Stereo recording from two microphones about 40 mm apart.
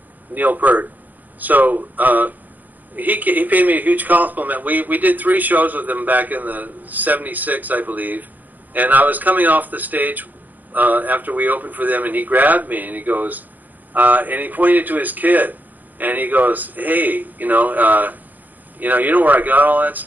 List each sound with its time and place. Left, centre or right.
0.3 s a man's voice: right